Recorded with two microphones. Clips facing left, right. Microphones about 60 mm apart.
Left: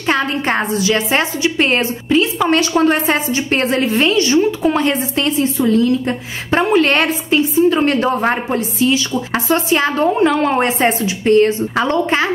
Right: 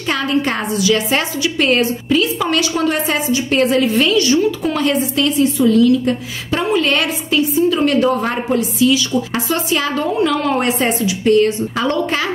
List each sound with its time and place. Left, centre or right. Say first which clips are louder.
0.1 s a woman's voice: left 1 dB; left